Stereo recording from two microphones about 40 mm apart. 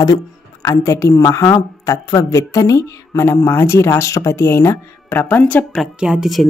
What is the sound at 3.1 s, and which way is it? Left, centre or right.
Speech, left.